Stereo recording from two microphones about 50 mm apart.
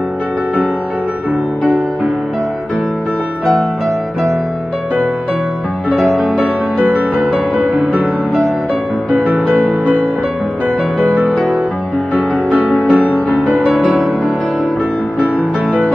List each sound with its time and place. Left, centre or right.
6.8 s music: right
9.1 s music: right
11.0 s music: right
11.3 s music: centre
12.1 s music: right
12.7 s music: left